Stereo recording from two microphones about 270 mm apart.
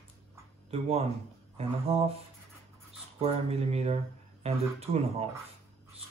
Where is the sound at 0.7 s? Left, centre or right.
Right.